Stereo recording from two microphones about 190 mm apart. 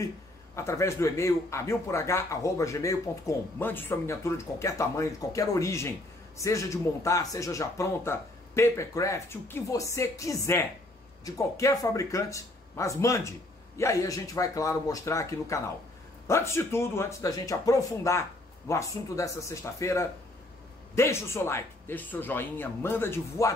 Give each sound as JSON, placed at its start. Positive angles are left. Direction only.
{"t": 0.6, "sound": "speech", "side_deg": 15}